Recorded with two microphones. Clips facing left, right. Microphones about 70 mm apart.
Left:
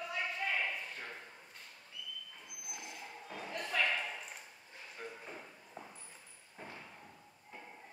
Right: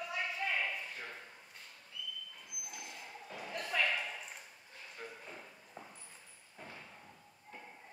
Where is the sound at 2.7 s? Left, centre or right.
Left.